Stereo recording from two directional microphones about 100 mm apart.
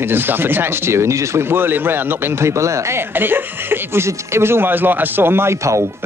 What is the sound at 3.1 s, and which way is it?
Speech, 20° right (ahead or behind).